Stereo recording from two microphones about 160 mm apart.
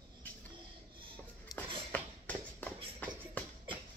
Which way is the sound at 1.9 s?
10° left (ahead or behind).